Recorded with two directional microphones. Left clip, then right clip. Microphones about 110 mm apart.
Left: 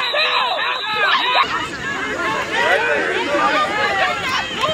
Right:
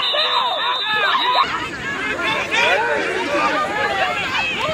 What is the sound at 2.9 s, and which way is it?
Chatter, 30° left (ahead or behind).